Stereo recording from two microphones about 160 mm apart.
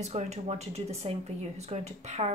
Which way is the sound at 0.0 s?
45° right (ahead or behind).